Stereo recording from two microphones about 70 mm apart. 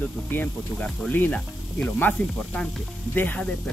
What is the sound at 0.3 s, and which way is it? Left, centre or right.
Speech, left.